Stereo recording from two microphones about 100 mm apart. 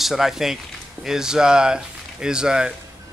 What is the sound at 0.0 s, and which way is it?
Speech, centre (ahead or behind).